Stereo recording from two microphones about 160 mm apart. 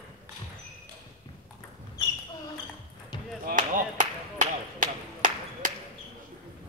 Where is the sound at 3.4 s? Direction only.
55° right (ahead or behind).